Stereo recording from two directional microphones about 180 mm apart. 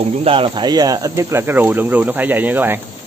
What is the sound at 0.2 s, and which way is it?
A man's voice, 30° right (ahead or behind).